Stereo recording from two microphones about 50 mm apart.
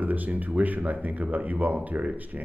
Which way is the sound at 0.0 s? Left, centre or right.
Right.